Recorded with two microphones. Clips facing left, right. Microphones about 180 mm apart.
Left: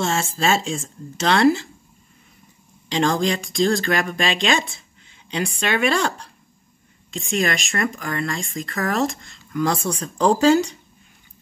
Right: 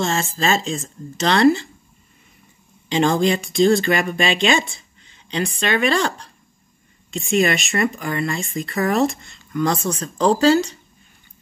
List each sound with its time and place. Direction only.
0.0 s speech: centre (ahead or behind)
2.9 s speech: 5° right (ahead or behind); by 10.8 s 15° left (ahead or behind)